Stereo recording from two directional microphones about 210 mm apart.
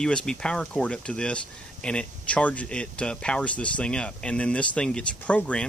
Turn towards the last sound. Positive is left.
turn(degrees=5)  # may be behind; listen again after turning